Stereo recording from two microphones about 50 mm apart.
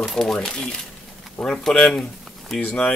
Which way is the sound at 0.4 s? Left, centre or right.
Centre.